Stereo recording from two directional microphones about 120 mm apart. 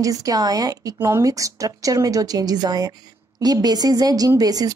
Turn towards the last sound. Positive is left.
turn(degrees=-30)  # may be behind; listen again after turning